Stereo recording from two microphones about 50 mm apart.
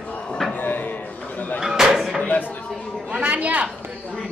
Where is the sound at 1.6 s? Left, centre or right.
Centre.